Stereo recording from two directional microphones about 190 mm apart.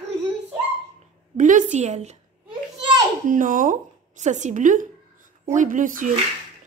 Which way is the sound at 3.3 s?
45° right (ahead or behind).